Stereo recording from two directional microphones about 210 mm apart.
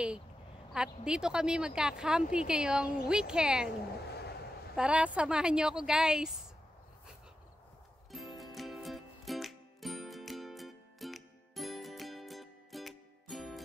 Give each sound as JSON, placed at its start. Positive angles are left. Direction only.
{"t": 0.7, "sound": "a woman's voice", "side_deg": -5}
{"t": 4.1, "sound": "a sound", "side_deg": 50}
{"t": 4.7, "sound": "a woman's voice", "side_deg": -5}
{"t": 8.1, "sound": "music", "side_deg": 0}